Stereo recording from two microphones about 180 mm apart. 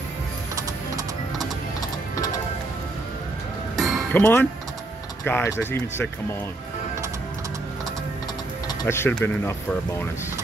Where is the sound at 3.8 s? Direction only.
Centre (ahead or behind).